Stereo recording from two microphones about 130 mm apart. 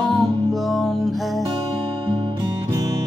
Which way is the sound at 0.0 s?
Centre (ahead or behind).